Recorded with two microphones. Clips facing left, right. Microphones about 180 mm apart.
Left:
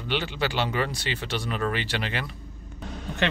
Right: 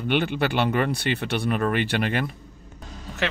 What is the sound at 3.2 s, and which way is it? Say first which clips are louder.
Speech: left 1 dB; 5° right (ahead or behind).